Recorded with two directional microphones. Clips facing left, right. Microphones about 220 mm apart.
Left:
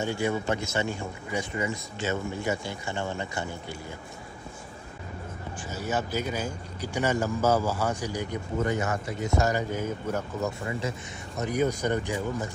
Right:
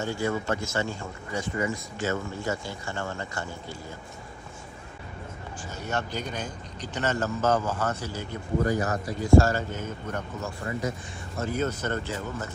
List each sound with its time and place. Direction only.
0.0 s speech: 20° left (ahead or behind)
5.8 s speech: 5° left (ahead or behind)
11.3 s speech: 15° left (ahead or behind)